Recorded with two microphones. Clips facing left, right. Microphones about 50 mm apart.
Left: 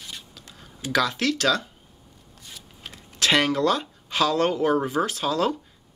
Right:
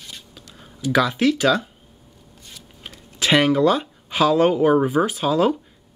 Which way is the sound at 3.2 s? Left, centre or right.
Centre.